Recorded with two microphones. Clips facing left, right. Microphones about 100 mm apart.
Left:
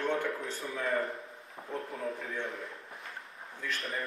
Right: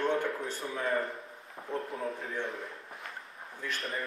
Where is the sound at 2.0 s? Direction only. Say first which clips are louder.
Right 1 dB; 30° right (ahead or behind).